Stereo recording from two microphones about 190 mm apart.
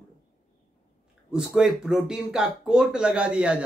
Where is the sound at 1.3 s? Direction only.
Centre (ahead or behind).